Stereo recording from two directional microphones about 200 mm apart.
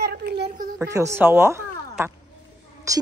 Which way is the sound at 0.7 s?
15° right (ahead or behind).